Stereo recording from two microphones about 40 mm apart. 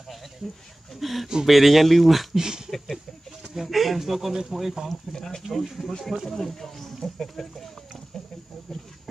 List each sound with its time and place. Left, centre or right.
0.9 s speech: centre
2.3 s a sound: centre
3.5 s speech: centre
5.1 s speech: centre
5.5 s speech: centre